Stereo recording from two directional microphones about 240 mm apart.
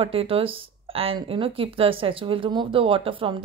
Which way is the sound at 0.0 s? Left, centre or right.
Right.